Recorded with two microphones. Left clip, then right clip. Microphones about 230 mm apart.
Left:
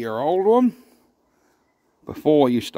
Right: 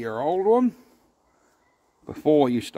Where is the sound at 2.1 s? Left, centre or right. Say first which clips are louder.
Left 3 dB; left.